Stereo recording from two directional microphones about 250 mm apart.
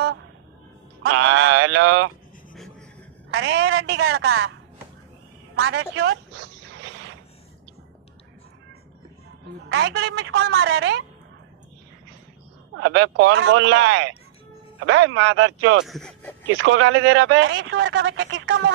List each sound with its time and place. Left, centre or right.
1.0 s speech: right
3.3 s speech: right
5.6 s speech: right
9.7 s speech: right
12.7 s speech: right
15.8 s speech: centre
16.5 s speech: right